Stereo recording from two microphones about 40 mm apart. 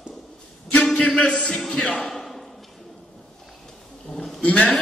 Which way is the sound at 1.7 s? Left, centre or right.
Centre.